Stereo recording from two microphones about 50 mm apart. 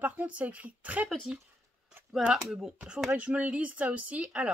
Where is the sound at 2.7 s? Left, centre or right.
Centre.